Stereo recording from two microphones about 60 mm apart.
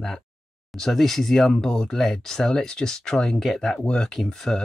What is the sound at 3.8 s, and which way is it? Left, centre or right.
Speech, centre.